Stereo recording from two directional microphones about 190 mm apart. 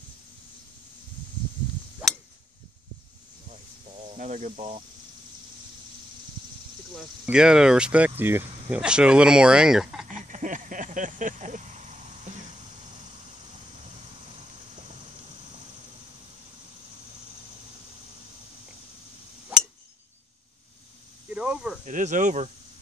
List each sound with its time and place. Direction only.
3.9 s snake: 35° right (ahead or behind)
7.2 s speech: 5° right (ahead or behind)
10.0 s a sound: 40° right (ahead or behind)
21.3 s cricket: 5° right (ahead or behind)
21.8 s speech: 40° right (ahead or behind)